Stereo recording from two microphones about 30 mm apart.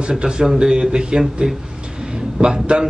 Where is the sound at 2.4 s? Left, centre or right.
Right.